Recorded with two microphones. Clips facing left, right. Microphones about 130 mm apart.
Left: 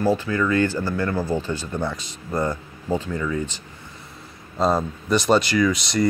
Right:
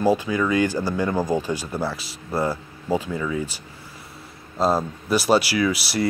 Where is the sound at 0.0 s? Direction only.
15° right (ahead or behind).